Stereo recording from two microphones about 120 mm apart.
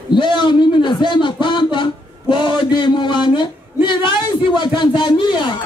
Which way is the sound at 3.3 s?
40° left (ahead or behind).